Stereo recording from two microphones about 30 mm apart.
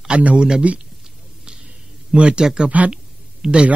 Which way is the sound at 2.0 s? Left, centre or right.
Right.